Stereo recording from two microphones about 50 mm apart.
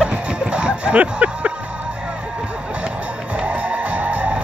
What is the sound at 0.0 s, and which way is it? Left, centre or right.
Music, centre.